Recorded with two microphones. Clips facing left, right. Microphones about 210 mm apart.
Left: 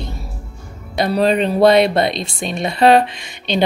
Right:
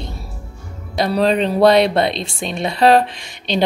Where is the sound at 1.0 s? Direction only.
Centre (ahead or behind).